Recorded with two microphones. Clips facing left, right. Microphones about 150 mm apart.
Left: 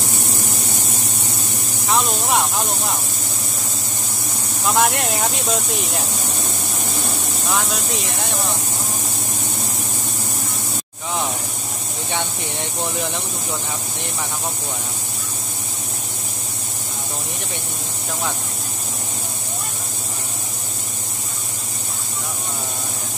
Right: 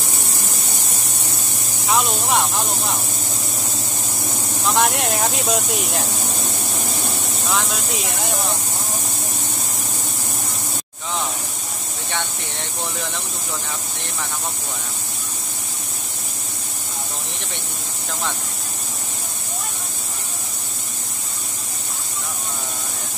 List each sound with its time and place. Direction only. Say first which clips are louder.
1.9 s speech: even; centre (ahead or behind)
4.6 s speech: left 1 dB; centre (ahead or behind)
7.4 s speech: left 1 dB; centre (ahead or behind)
12.8 s speech: left 3 dB; 15° left (ahead or behind)